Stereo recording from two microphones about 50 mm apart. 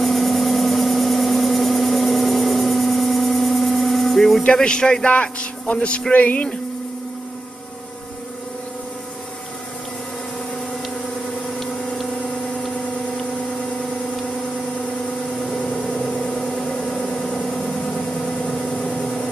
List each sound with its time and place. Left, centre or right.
0.0 s vehicle: centre
4.6 s a man's voice: centre
16.3 s vehicle: left
18.7 s vehicle: centre